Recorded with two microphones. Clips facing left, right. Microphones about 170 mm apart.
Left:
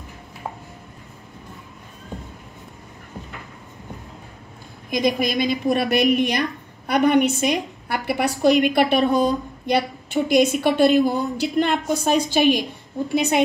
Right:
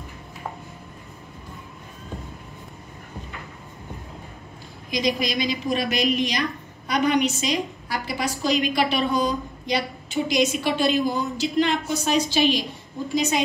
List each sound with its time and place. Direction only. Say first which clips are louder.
4.9 s a woman's voice: left 4 dB; 55° left (ahead or behind)